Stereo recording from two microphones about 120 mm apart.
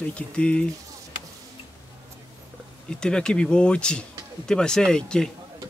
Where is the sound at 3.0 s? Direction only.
5° left (ahead or behind).